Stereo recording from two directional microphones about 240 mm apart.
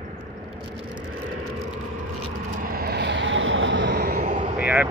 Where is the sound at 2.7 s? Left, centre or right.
Right.